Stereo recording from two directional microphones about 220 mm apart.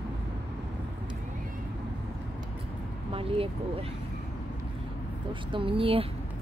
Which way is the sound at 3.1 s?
25° right (ahead or behind).